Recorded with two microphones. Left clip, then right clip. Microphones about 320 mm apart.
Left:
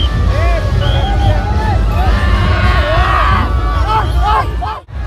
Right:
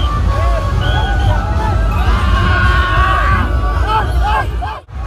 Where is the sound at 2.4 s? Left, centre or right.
Left.